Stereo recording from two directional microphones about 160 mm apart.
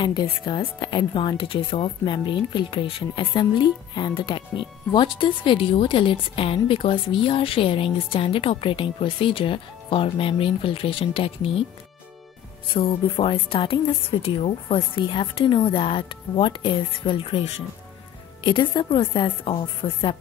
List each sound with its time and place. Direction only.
0.0 s speech: 25° left (ahead or behind)
12.7 s speech: 35° left (ahead or behind)